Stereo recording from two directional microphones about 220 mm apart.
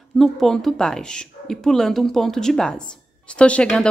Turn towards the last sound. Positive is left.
turn(degrees=5)  # may be behind; listen again after turning